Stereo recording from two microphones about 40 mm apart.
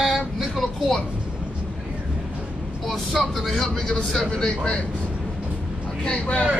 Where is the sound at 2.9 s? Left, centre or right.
Centre.